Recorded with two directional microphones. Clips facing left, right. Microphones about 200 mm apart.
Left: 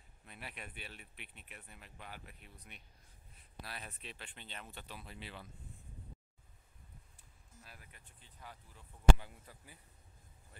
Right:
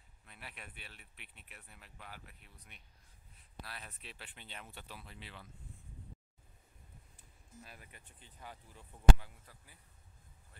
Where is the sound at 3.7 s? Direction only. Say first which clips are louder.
Left 3 dB; 15° left (ahead or behind).